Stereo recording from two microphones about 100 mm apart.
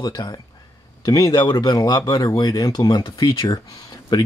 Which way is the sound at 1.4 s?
50° left (ahead or behind).